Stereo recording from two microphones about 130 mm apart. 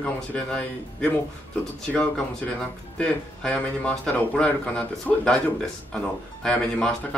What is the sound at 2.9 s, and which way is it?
Speech, 5° left (ahead or behind).